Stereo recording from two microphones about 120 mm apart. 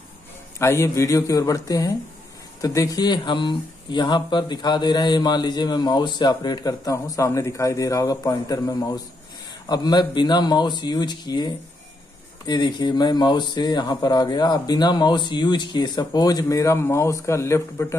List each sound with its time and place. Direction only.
0.6 s speech: 20° left (ahead or behind)